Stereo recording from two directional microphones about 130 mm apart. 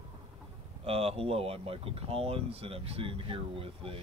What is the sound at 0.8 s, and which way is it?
Speech, 50° right (ahead or behind).